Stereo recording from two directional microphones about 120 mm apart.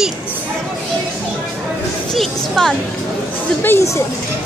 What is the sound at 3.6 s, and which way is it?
Speech, 15° left (ahead or behind).